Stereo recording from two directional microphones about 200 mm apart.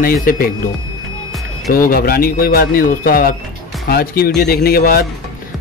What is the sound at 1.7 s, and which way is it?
Speech, 45° left (ahead or behind).